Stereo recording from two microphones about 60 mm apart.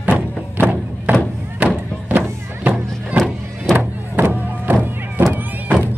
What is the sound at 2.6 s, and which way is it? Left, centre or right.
Music, right.